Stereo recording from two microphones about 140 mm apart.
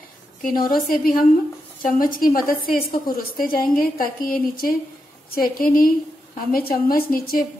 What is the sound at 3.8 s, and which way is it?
A woman's voice, 90° left.